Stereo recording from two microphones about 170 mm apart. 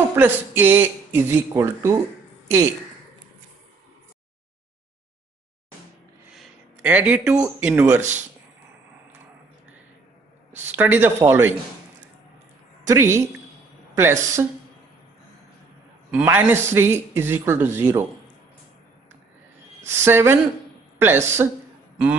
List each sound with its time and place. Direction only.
0.1 s a man's voice: 10° right (ahead or behind)
6.8 s a man's voice: 10° right (ahead or behind)
10.8 s a man's voice: 10° right (ahead or behind)
12.8 s a woman's voice: 15° right (ahead or behind)
16.1 s a man's voice: 10° right (ahead or behind)
19.9 s a man's voice: 15° right (ahead or behind)